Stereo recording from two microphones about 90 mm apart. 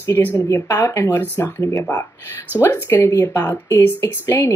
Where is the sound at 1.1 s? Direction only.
20° left (ahead or behind).